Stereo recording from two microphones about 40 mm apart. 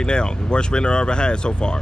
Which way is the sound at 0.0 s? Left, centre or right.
Left.